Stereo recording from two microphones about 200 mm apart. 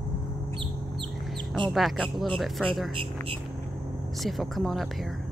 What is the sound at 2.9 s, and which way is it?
Speech, 25° right (ahead or behind).